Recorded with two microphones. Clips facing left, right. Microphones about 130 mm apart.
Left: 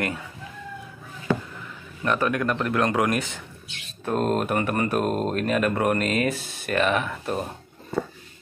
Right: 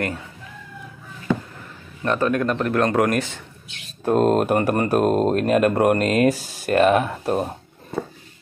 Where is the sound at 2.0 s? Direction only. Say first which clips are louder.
Right 3 dB; 30° right (ahead or behind).